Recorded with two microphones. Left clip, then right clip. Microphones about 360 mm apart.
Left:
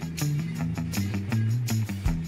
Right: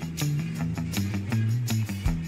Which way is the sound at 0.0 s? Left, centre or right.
Centre.